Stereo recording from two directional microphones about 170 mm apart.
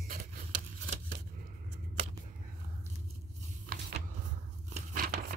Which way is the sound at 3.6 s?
65° right (ahead or behind).